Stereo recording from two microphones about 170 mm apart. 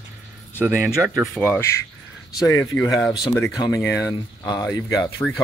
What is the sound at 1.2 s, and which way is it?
Speech, 10° left (ahead or behind).